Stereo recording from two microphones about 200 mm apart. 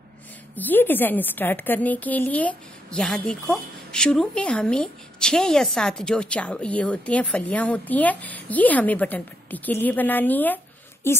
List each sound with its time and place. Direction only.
0.6 s a woman's voice: 10° left (ahead or behind)